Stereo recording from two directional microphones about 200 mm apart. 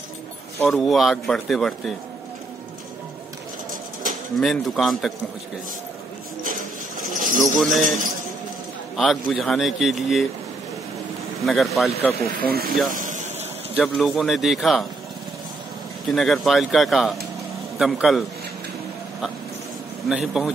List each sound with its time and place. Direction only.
0.7 s speech: centre (ahead or behind)
4.4 s speech: centre (ahead or behind)
7.2 s a sound: 40° right (ahead or behind)
7.5 s speech: centre (ahead or behind)
8.9 s speech: centre (ahead or behind)
11.4 s speech: centre (ahead or behind)
12.4 s speech: 50° right (ahead or behind)
12.9 s a sound: 40° right (ahead or behind)
13.7 s speech: centre (ahead or behind)
16.1 s speech: centre (ahead or behind)
20.1 s speech: centre (ahead or behind)